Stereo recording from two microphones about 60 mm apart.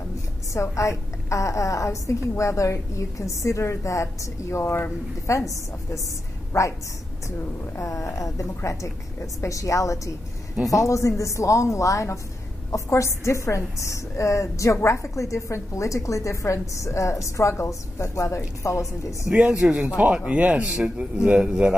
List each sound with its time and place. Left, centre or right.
0.5 s a woman's voice: left
6.5 s a woman's voice: left
7.7 s a woman's voice: left
19.7 s a man's voice: right